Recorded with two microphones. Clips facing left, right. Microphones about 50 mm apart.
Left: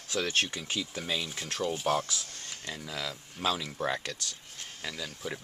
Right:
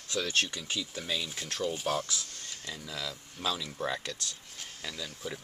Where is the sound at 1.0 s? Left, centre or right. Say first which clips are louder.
Left 1 dB; centre.